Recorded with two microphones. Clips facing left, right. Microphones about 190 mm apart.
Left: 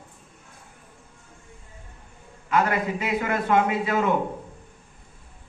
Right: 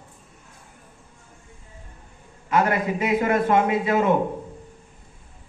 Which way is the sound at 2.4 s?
25° right (ahead or behind).